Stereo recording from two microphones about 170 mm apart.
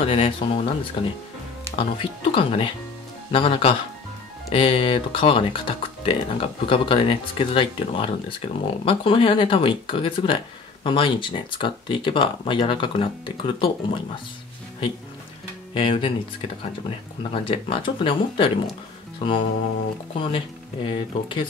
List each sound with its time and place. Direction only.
0.0 s speech: 35° left (ahead or behind)
15.7 s speech: 30° left (ahead or behind)
19.1 s music: 30° left (ahead or behind)
20.2 s speech: 30° left (ahead or behind)